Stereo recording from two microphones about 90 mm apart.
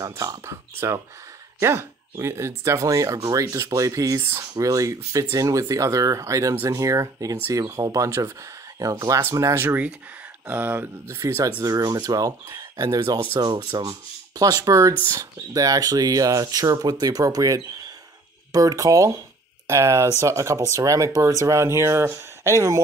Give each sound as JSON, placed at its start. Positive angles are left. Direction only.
{"t": 0.0, "sound": "speech", "side_deg": -40}
{"t": 10.5, "sound": "speech", "side_deg": -25}
{"t": 11.6, "sound": "speech", "side_deg": -45}
{"t": 13.6, "sound": "rub", "side_deg": -60}
{"t": 13.8, "sound": "speech", "side_deg": -45}